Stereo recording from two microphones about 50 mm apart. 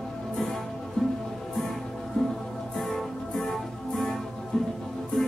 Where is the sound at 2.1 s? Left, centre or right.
Centre.